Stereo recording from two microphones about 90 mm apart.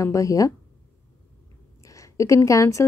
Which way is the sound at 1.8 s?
35° left (ahead or behind).